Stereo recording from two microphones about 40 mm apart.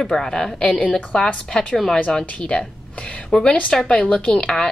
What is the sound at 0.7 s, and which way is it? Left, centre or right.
Speech, left.